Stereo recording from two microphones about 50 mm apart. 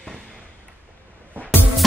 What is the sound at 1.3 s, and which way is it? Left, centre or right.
Music, right.